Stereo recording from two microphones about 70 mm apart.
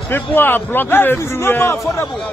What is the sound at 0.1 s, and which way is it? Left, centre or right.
A man's voice, left.